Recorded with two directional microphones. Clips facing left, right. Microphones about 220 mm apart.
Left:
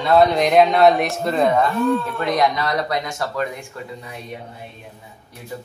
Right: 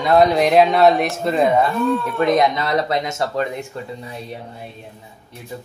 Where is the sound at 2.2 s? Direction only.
25° right (ahead or behind).